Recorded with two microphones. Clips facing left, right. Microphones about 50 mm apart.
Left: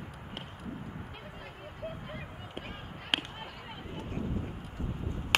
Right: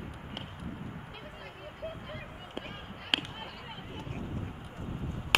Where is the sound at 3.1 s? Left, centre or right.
Centre.